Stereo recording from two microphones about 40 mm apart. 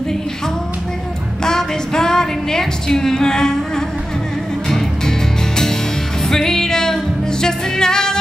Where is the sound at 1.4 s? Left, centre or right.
Centre.